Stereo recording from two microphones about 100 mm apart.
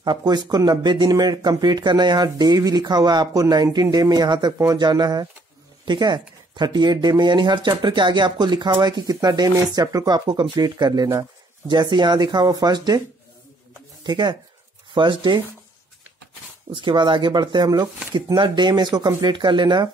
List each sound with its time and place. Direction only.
0.0 s speech: 45° right (ahead or behind)
14.0 s speech: 50° right (ahead or behind)
16.7 s speech: 50° right (ahead or behind)